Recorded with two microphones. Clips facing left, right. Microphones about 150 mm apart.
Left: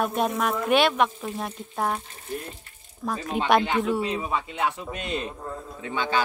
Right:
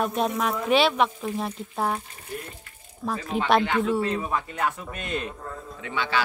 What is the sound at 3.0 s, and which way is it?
Speech, centre (ahead or behind).